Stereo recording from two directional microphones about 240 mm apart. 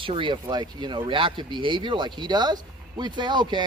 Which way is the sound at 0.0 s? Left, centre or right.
Right.